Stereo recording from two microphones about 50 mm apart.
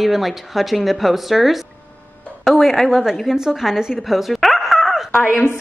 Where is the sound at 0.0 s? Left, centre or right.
Centre.